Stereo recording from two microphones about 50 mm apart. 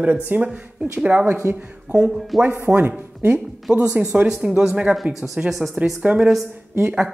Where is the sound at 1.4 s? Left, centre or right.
Right.